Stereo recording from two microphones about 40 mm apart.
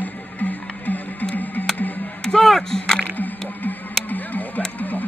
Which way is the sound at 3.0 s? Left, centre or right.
Left.